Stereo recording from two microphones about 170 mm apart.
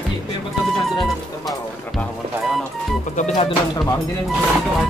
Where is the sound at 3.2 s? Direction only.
45° left (ahead or behind).